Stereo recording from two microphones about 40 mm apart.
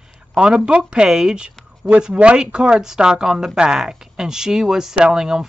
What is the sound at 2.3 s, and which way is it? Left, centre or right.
Speech, right.